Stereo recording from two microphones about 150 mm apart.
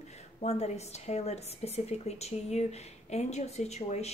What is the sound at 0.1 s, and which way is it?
A woman's voice, 45° left (ahead or behind).